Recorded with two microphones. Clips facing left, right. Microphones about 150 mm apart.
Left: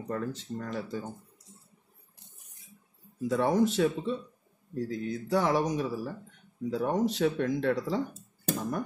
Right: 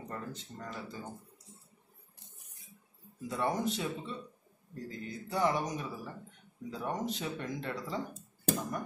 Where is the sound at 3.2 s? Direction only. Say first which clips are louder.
Left 7 dB; 90° left.